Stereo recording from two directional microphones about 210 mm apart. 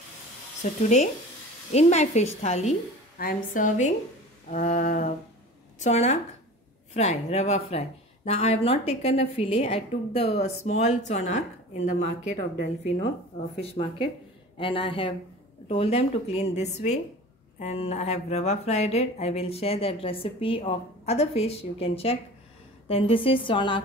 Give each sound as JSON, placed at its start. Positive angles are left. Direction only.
{"t": 0.8, "sound": "a woman's voice", "side_deg": 35}
{"t": 13.6, "sound": "speech", "side_deg": 25}